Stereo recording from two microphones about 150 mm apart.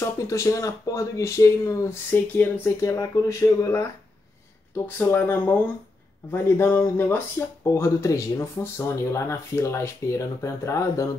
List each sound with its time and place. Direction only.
0.3 s speech: 20° left (ahead or behind)